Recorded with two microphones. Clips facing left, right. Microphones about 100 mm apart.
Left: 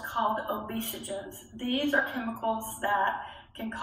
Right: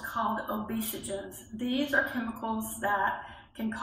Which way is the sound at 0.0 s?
10° right (ahead or behind).